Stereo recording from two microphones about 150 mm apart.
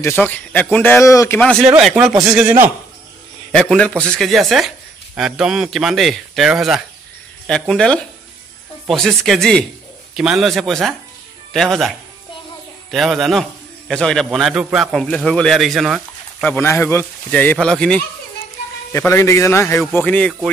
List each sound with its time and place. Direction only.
0.0 s speech: 10° left (ahead or behind)
1.4 s a man's voice: 5° left (ahead or behind)
3.5 s a man's voice: 5° left (ahead or behind)
12.9 s a man's voice: centre (ahead or behind)
16.4 s speech: 15° left (ahead or behind)
18.9 s speech: 20° left (ahead or behind)